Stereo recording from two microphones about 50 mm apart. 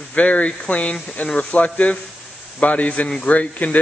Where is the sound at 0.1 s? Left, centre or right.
Left.